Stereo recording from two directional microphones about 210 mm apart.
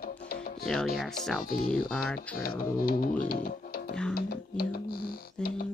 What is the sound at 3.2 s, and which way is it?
Speech, 45° left (ahead or behind).